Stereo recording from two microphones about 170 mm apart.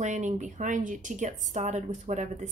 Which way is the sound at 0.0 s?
45° right (ahead or behind).